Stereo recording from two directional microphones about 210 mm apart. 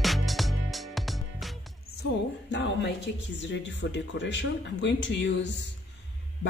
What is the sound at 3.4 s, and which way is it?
Speech, 60° left (ahead or behind).